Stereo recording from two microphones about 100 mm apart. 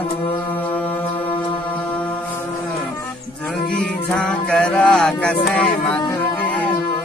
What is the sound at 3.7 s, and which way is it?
Music, 10° left (ahead or behind).